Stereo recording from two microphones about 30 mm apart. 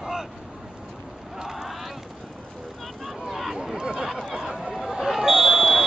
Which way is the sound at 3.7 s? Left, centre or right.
Centre.